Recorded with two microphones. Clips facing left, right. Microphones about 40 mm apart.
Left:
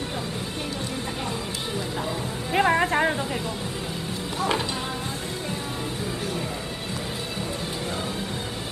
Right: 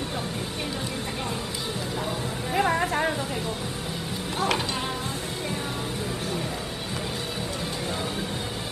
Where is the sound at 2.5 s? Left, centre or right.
Left.